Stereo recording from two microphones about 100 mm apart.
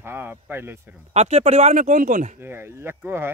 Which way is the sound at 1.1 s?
90° right.